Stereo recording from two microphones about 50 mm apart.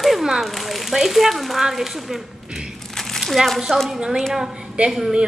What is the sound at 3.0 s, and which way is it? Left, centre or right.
Speech, centre.